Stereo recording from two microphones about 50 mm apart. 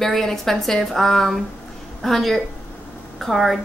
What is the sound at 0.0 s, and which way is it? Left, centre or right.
A woman's voice, centre.